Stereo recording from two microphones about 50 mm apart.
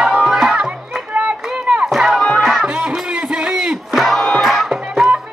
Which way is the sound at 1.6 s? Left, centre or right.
Centre.